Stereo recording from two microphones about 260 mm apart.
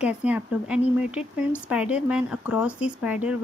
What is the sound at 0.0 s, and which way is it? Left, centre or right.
Speech, centre.